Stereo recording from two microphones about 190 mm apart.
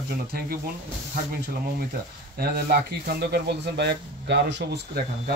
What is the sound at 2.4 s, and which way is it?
Speech, 55° right (ahead or behind).